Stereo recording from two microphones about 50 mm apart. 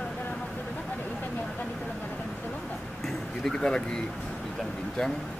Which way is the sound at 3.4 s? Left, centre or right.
Centre.